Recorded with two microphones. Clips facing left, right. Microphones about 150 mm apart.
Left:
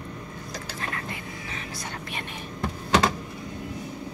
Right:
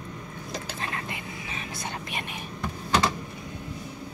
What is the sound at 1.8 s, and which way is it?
Whispering, 20° right (ahead or behind).